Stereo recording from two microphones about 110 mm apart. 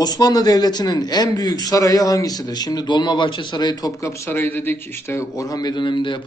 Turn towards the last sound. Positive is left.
turn(degrees=45)  # may be behind; listen again after turning